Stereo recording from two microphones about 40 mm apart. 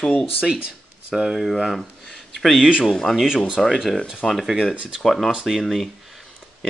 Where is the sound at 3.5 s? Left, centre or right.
Centre.